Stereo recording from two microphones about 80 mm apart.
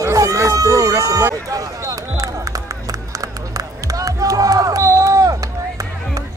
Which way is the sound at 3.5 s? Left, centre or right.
Right.